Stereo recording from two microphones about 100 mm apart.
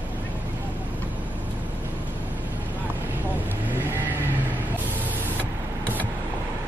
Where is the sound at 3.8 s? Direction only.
20° right (ahead or behind).